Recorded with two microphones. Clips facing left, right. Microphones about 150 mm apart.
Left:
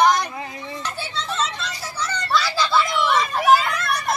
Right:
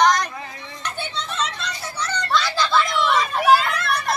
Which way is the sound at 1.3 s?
5° left (ahead or behind).